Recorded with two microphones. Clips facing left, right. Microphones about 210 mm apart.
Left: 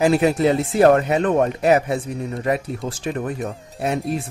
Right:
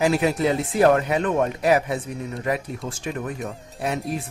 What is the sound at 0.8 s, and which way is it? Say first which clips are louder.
Speech: left 3 dB; 45° left (ahead or behind).